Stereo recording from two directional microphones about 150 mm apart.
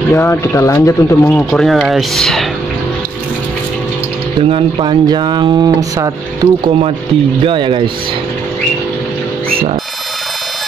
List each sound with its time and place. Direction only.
0.1 s speech: 15° left (ahead or behind)
1.5 s speech: centre (ahead or behind)
4.4 s speech: 35° right (ahead or behind)